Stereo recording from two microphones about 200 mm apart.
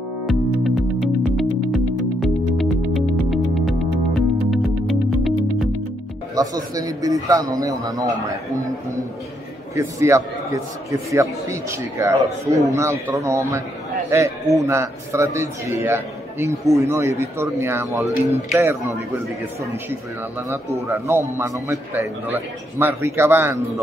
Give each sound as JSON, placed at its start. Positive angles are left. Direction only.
{"t": 0.3, "sound": "music", "side_deg": 0}
{"t": 6.3, "sound": "a man's voice", "side_deg": -20}
{"t": 9.8, "sound": "a man's voice", "side_deg": -15}
{"t": 14.7, "sound": "a man's voice", "side_deg": -15}
{"t": 20.4, "sound": "a man's voice", "side_deg": -15}